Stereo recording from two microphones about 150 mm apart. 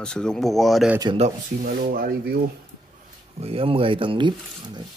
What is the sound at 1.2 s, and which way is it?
Speech, 65° right (ahead or behind).